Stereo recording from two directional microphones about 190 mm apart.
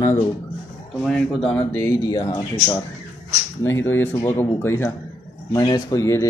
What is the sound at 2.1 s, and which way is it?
Speech, 20° left (ahead or behind).